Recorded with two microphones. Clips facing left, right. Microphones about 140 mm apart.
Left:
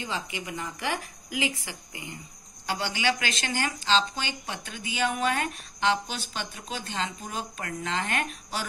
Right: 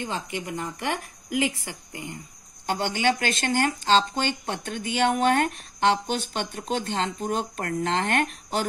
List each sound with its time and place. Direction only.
0.0 s speech: 50° right (ahead or behind)